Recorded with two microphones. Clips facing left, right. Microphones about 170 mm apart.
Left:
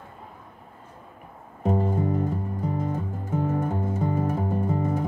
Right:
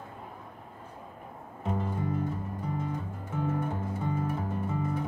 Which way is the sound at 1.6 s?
40° left (ahead or behind).